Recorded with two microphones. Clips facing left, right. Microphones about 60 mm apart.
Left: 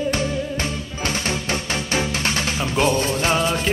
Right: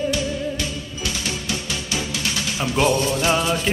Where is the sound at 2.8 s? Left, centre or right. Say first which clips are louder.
Right 1 dB; left.